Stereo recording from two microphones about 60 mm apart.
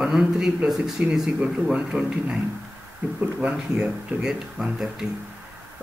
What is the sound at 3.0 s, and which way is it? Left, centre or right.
Speech, right.